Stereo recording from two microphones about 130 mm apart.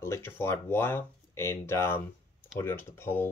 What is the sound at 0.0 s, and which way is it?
Speech, 20° left (ahead or behind).